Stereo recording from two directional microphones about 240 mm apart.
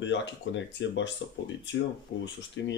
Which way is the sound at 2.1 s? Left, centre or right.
Left.